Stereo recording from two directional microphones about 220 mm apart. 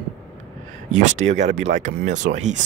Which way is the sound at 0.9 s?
35° right (ahead or behind).